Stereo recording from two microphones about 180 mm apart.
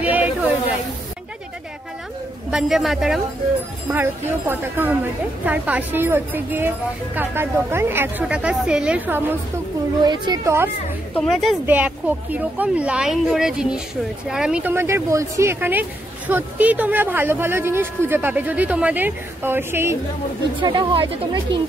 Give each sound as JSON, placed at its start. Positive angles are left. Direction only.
{"t": 0.0, "sound": "snake", "side_deg": -10}
{"t": 2.5, "sound": "speech", "side_deg": 0}
{"t": 3.9, "sound": "speech", "side_deg": -10}
{"t": 10.0, "sound": "speech", "side_deg": -20}
{"t": 11.1, "sound": "speech", "side_deg": 0}
{"t": 20.6, "sound": "speech", "side_deg": -25}